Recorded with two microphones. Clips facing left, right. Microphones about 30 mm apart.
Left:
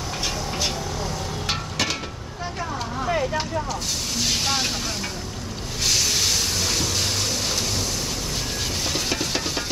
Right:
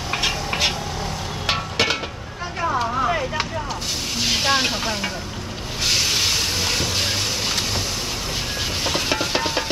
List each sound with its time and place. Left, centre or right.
0.1 s a sound: right
1.5 s music: right
4.2 s vehicle: right
8.8 s stir: right